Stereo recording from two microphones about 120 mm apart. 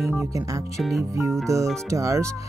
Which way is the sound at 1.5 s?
25° right (ahead or behind).